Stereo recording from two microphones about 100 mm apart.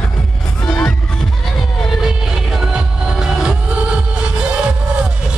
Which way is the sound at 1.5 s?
5° right (ahead or behind).